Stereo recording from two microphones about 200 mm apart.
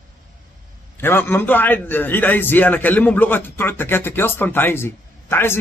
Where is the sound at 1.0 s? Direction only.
10° left (ahead or behind).